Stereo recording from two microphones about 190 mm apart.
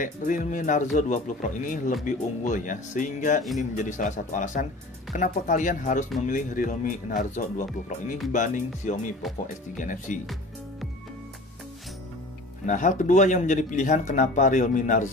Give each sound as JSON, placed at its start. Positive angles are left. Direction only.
{"t": 0.0, "sound": "speech", "side_deg": 45}
{"t": 12.6, "sound": "speech", "side_deg": 40}